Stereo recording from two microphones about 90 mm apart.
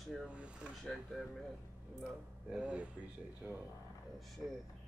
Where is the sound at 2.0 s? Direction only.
10° right (ahead or behind).